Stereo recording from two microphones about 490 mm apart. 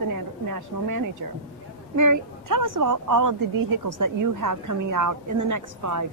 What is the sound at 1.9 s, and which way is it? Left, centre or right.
A woman's voice, right.